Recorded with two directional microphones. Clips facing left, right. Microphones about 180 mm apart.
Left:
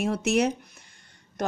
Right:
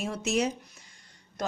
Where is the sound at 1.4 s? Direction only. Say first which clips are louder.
Left 4 dB; 60° left (ahead or behind).